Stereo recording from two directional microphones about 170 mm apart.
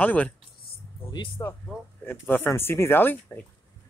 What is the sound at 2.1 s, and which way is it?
Speech, 10° left (ahead or behind).